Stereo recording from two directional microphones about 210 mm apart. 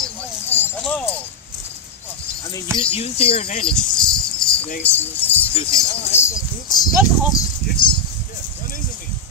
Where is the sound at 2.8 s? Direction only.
30° left (ahead or behind).